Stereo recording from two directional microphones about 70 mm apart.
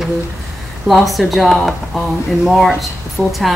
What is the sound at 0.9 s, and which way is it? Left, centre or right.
Speech, centre.